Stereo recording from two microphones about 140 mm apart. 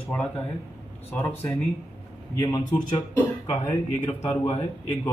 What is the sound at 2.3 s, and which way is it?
Speech, 25° left (ahead or behind).